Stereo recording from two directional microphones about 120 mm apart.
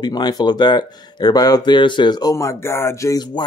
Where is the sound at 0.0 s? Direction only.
35° left (ahead or behind).